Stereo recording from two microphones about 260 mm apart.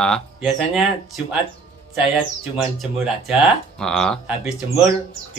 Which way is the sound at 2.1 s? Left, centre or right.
Centre.